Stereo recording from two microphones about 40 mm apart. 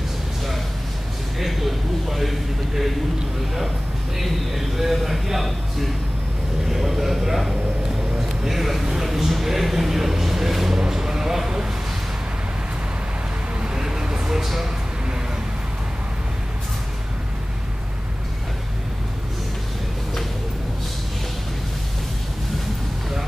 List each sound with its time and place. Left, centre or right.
1.4 s a sound: centre
4.2 s speech: centre
6.7 s vehicle: centre
7.0 s speech: centre
8.5 s speech: centre
13.7 s a sound: centre